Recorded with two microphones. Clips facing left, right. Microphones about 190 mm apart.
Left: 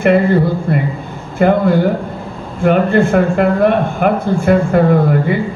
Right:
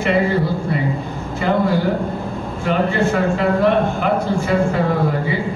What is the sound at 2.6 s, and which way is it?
Speech, 55° left (ahead or behind).